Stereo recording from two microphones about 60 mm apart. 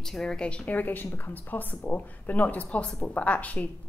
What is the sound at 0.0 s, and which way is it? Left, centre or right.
A woman's voice, centre.